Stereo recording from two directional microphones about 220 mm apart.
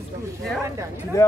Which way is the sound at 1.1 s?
15° left (ahead or behind).